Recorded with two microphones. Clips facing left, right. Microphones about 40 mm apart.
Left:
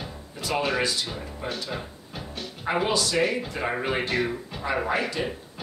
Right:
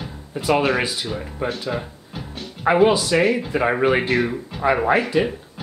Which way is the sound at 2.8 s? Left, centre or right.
Right.